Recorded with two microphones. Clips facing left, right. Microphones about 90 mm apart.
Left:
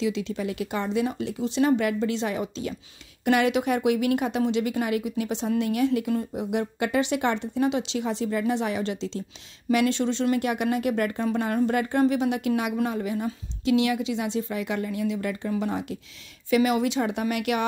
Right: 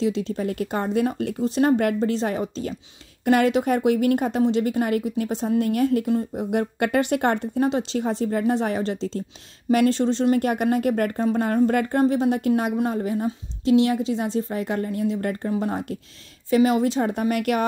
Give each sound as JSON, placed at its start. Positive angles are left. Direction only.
{"t": 0.0, "sound": "a woman's voice", "side_deg": -40}
{"t": 6.5, "sound": "a woman's voice", "side_deg": -50}